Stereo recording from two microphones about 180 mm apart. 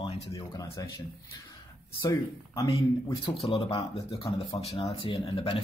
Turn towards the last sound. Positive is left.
turn(degrees=30)  # may be behind; listen again after turning